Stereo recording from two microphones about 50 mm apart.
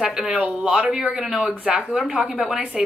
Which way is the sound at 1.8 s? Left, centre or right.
Centre.